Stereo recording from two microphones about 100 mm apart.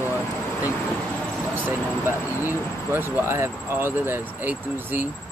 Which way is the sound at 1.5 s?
20° right (ahead or behind).